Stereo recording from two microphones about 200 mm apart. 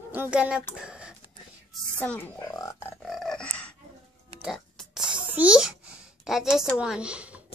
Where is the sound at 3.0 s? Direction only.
Centre (ahead or behind).